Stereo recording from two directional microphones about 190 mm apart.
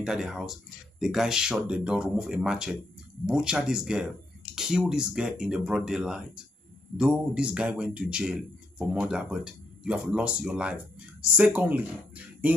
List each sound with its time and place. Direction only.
0.0 s speech: 5° right (ahead or behind)